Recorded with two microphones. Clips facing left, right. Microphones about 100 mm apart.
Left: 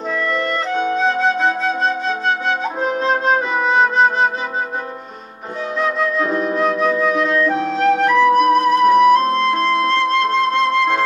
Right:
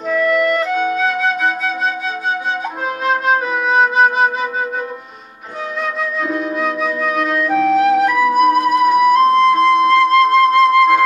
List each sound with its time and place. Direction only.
0.1 s music: 10° right (ahead or behind)
0.7 s flute: 30° left (ahead or behind)
3.3 s music: 5° right (ahead or behind)
5.8 s flute: centre (ahead or behind)
6.2 s flute: 40° left (ahead or behind)
6.5 s flute: centre (ahead or behind)